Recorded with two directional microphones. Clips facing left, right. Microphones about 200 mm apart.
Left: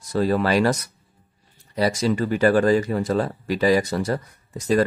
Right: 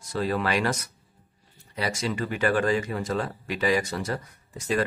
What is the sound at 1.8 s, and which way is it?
A man's voice, 40° left (ahead or behind).